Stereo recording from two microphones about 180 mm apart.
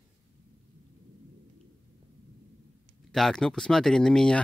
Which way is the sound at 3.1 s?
5° left (ahead or behind).